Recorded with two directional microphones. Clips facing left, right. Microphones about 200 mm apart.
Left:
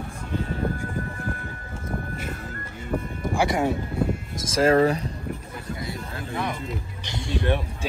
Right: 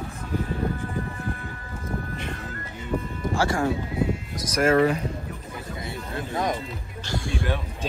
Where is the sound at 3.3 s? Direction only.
20° left (ahead or behind).